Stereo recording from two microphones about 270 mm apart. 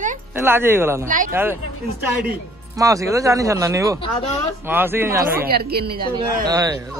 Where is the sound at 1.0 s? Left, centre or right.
Right.